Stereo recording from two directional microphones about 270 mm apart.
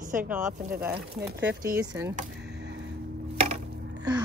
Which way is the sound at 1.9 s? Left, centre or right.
Centre.